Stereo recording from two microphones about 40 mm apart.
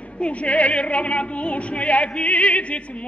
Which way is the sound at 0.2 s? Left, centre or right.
Left.